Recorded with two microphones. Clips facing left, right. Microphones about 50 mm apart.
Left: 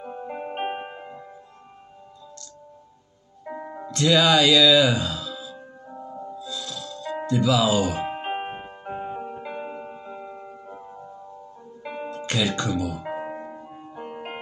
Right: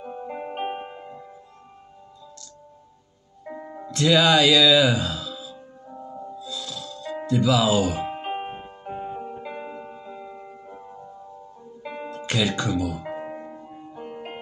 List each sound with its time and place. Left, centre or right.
0.0 s music: centre
3.4 s music: centre
3.9 s speech: centre
6.4 s music: centre
7.2 s speech: centre
8.0 s music: left
10.4 s music: centre
11.8 s music: centre
12.1 s speech: centre
13.0 s music: centre